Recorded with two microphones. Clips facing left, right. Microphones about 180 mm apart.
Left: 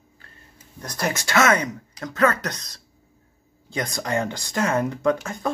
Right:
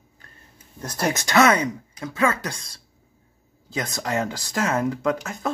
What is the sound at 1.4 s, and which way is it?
Speech, 15° right (ahead or behind).